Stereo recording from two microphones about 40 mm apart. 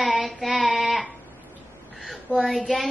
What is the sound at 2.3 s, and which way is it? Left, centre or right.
Speech, left.